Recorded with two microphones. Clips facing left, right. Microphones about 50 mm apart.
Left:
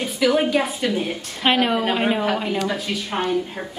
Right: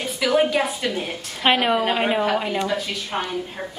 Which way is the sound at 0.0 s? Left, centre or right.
Centre.